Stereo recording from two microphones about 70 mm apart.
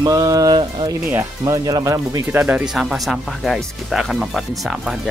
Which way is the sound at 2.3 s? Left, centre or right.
Right.